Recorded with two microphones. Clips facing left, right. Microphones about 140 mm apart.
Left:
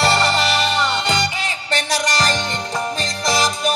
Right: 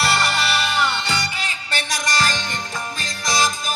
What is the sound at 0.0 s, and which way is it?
Music, 90° left.